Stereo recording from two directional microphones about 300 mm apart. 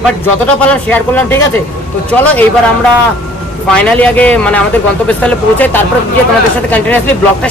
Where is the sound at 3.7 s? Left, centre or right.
Centre.